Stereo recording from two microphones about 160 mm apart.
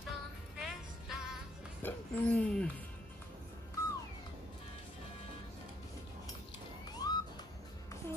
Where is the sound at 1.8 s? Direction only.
10° left (ahead or behind).